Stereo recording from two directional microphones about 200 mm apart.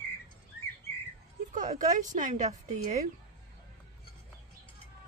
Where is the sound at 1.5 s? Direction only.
40° right (ahead or behind).